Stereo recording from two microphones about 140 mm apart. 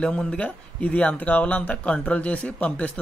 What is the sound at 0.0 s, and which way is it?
Speech, 5° left (ahead or behind).